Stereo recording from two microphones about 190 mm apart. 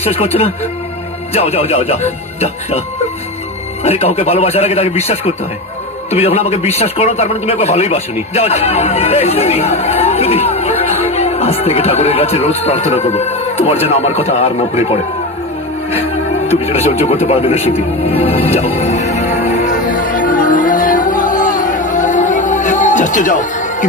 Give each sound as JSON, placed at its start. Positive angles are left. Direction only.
{"t": 0.0, "sound": "a man's voice", "side_deg": 30}
{"t": 3.8, "sound": "a man's voice", "side_deg": 35}
{"t": 18.8, "sound": "music", "side_deg": 35}